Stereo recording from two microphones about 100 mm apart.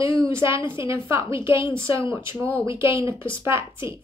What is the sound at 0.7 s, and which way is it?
Speech, 25° right (ahead or behind).